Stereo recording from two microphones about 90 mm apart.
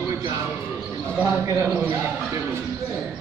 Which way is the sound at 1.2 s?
35° right (ahead or behind).